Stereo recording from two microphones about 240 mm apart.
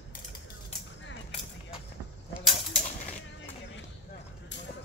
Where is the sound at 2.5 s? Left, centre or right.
Left.